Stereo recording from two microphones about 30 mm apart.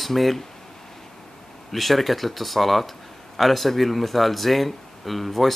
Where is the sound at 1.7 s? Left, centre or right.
Centre.